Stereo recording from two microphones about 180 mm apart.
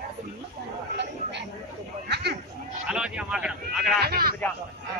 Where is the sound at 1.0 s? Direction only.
70° right (ahead or behind).